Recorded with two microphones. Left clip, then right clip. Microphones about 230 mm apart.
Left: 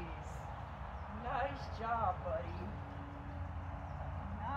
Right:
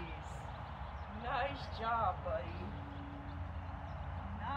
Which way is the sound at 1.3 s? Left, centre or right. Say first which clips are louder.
Right 1 dB; centre.